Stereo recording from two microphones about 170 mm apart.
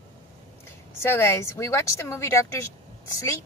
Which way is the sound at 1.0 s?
15° left (ahead or behind).